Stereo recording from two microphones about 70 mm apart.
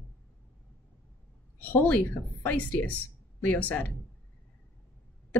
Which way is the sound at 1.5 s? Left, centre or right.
Left.